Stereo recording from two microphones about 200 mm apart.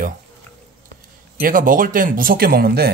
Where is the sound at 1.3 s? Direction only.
45° right (ahead or behind).